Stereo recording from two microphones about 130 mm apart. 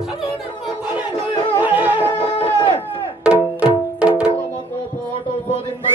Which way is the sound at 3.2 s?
10° right (ahead or behind).